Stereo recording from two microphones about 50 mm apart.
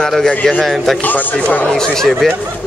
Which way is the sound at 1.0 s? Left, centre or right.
Left.